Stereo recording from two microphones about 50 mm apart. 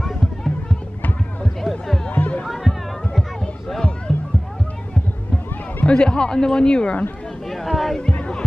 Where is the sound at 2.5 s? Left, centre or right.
Centre.